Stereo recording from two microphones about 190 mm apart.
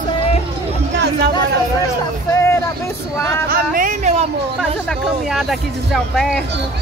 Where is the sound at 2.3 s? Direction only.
15° left (ahead or behind).